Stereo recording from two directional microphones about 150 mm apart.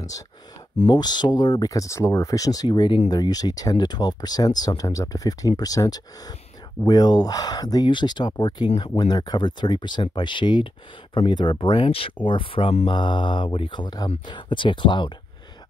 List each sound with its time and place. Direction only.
0.7 s speech: 30° left (ahead or behind)